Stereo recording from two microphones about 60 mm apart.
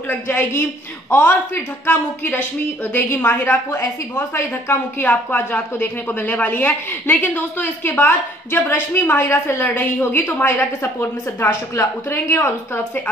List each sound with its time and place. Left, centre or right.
0.3 s a woman's voice: left
5.0 s a woman's voice: left
10.4 s a woman's voice: left